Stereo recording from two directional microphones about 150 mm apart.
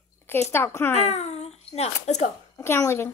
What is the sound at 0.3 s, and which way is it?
Speech, 15° left (ahead or behind).